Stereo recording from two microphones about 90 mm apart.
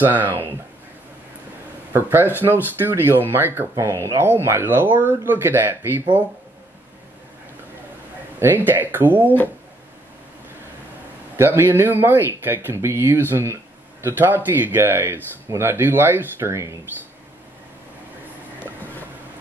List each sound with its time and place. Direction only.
0.0 s speech: 20° right (ahead or behind)
1.9 s speech: 25° right (ahead or behind)
8.4 s speech: 25° right (ahead or behind)
11.3 s speech: 25° right (ahead or behind)